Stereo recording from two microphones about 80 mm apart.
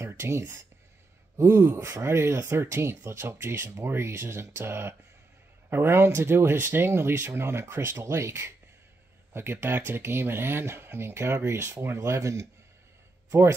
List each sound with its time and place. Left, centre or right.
0.0 s speech: right